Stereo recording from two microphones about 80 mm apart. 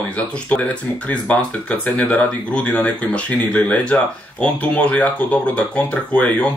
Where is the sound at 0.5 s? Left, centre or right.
Centre.